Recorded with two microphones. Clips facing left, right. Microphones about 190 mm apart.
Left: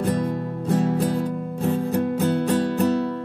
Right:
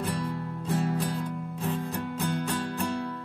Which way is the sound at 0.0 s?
50° left (ahead or behind).